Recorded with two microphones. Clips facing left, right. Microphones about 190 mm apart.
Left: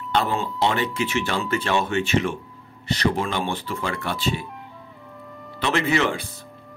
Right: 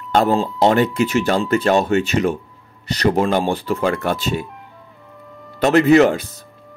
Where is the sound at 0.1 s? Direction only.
45° right (ahead or behind).